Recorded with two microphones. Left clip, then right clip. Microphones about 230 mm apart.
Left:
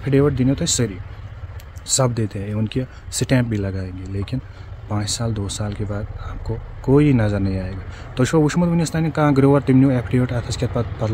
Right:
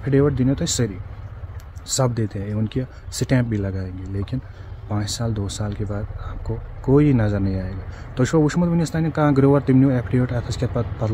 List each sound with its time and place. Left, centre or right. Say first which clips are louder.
0.0 s speech: left 1 dB; centre